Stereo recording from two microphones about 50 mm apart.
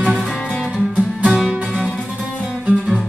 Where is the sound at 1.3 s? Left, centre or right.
Centre.